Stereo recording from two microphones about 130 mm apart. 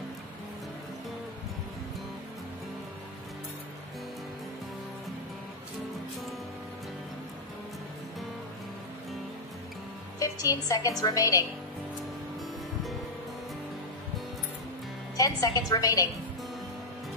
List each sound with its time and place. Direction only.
10.1 s a woman's voice: 25° left (ahead or behind)
15.1 s a woman's voice: 25° left (ahead or behind)